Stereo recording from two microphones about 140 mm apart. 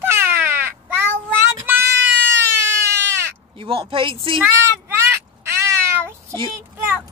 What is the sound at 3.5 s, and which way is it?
Speech, 40° right (ahead or behind).